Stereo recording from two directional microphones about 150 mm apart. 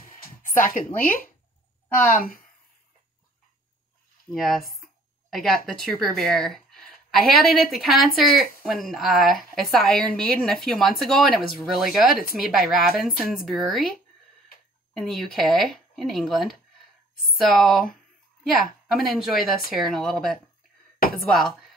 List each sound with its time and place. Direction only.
0.5 s a woman's voice: 65° left (ahead or behind)
4.3 s speech: centre (ahead or behind)
15.0 s speech: centre (ahead or behind)